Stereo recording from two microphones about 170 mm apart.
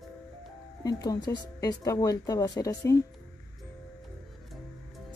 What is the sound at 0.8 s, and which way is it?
Speech, 25° left (ahead or behind).